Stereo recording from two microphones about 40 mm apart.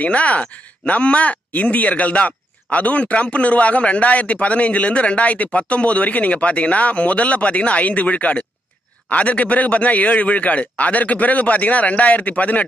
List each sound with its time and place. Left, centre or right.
0.0 s speech: left